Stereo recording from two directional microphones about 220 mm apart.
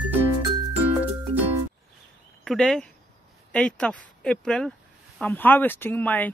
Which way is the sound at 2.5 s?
Centre (ahead or behind).